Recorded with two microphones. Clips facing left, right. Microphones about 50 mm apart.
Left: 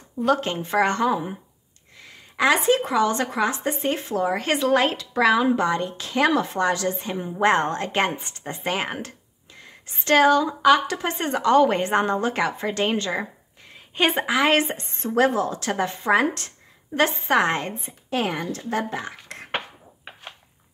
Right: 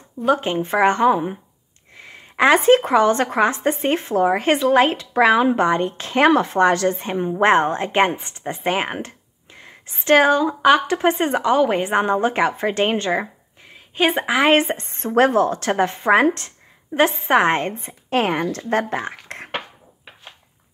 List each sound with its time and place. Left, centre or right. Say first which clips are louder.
0.2 s a woman's voice: right 3 dB; centre
5.1 s a woman's voice: right 3 dB; right
11.5 s a woman's voice: left 1 dB; centre; by 13.3 s right
13.7 s a sound: right 3 dB; centre
14.2 s speech: right 5 dB; right
16.9 s a woman's voice: right 4 dB; right
17.8 s a woman's voice: right 5 dB; right